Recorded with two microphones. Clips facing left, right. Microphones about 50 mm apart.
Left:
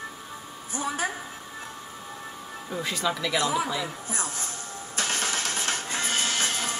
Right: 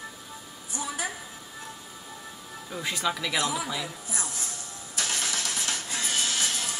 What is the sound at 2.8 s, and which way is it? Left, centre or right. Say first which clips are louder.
Speech: even; centre.